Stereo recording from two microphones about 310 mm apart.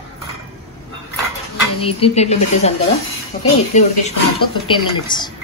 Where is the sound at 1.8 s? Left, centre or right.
Centre.